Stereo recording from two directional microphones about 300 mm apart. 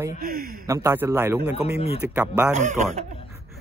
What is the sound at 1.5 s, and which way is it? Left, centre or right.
Speech, centre.